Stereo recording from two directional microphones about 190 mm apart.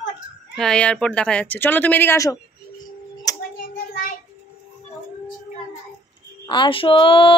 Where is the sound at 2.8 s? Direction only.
20° left (ahead or behind).